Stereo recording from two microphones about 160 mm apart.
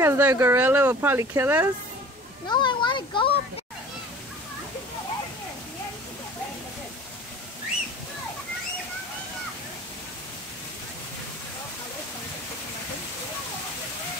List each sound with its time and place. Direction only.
0.0 s speech: 15° right (ahead or behind)
2.4 s a child's voice: 30° left (ahead or behind)